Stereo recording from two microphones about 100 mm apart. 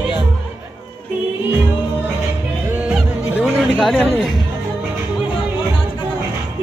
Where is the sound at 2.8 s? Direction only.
10° right (ahead or behind).